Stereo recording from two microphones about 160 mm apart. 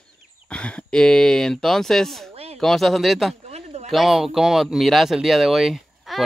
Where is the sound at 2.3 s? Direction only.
40° right (ahead or behind).